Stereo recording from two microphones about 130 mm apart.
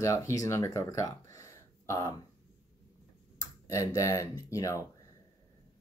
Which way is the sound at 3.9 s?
25° left (ahead or behind).